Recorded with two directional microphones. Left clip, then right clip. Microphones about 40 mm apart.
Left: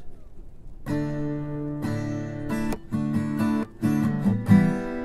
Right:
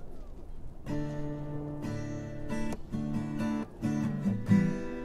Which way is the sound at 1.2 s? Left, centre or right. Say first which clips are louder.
Left 8 dB; left.